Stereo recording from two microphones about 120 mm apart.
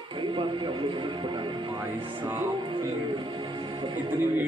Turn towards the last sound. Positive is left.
turn(degrees=-35)  # may be behind; listen again after turning